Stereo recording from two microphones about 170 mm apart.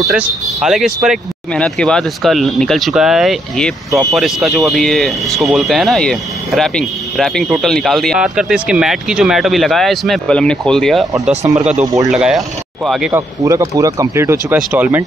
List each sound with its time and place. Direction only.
0.1 s speech: 5° right (ahead or behind)
11.8 s speech: 20° right (ahead or behind)
12.1 s speech: 5° right (ahead or behind)
13.1 s speech: 20° right (ahead or behind)